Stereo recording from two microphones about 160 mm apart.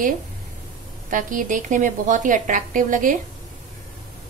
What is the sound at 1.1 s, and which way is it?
A woman's voice, 55° right (ahead or behind).